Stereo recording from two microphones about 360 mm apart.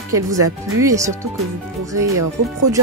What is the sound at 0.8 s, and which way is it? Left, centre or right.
Speech, centre.